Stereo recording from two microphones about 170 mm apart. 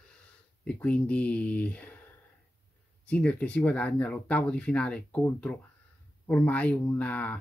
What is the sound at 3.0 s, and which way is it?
Speech, 5° left (ahead or behind).